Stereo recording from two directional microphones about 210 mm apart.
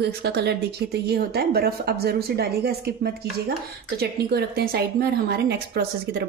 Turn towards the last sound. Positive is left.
turn(degrees=-50)  # may be behind; listen again after turning